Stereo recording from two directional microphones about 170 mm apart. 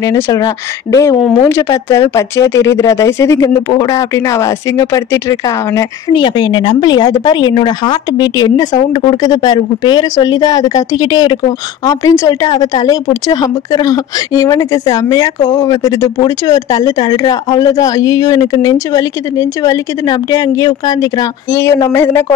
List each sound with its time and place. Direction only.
0.0 s a woman's voice: 20° left (ahead or behind)